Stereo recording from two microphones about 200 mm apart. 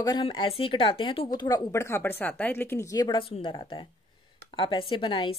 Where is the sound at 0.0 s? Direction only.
20° left (ahead or behind).